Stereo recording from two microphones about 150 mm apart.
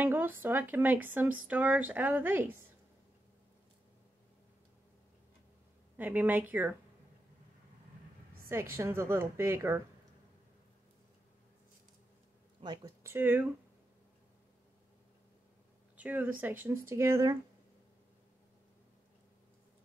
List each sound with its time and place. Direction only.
0.0 s speech: 15° right (ahead or behind)
5.9 s speech: 10° right (ahead or behind)
8.5 s speech: 15° right (ahead or behind)
12.6 s speech: 30° right (ahead or behind)
13.0 s speech: 15° right (ahead or behind)
16.0 s speech: 10° right (ahead or behind)